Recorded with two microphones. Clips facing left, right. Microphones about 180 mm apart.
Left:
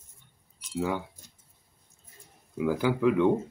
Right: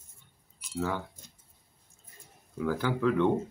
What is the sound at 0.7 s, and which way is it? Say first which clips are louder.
Speech: left 3 dB; 15° left (ahead or behind).